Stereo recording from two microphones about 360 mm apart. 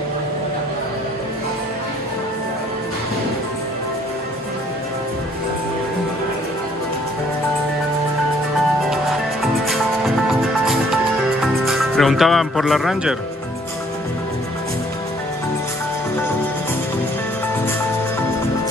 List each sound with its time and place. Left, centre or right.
8.9 s music: centre
11.6 s speech: centre